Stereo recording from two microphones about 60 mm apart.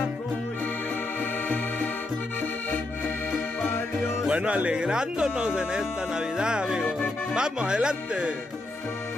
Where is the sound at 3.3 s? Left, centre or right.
Left.